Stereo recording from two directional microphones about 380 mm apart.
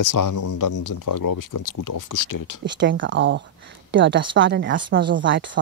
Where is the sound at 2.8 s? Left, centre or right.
Right.